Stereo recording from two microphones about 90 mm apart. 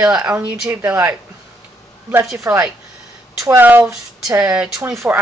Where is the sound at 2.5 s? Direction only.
30° right (ahead or behind).